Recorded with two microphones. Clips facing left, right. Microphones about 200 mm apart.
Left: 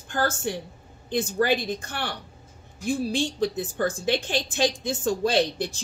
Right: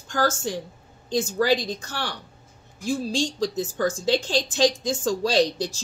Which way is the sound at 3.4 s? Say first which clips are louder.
Right 1 dB; 55° left (ahead or behind).